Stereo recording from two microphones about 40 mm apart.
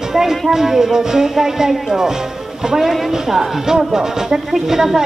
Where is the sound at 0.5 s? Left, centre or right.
Centre.